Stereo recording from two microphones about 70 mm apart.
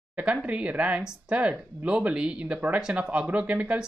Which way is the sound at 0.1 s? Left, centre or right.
Centre.